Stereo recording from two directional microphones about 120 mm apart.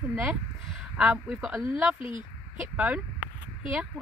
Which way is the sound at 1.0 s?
10° right (ahead or behind).